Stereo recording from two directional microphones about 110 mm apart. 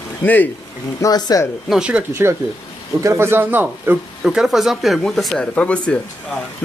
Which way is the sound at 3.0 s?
25° right (ahead or behind).